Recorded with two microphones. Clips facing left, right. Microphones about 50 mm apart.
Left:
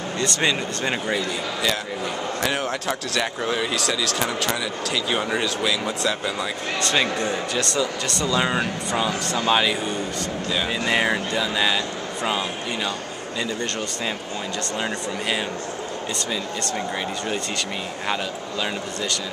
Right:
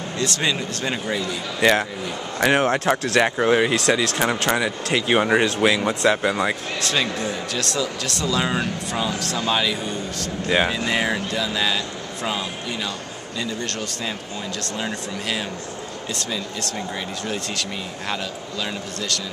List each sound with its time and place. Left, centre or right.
0.2 s speech: centre
1.6 s speech: right
6.8 s speech: centre
14.8 s speech: centre
18.0 s speech: centre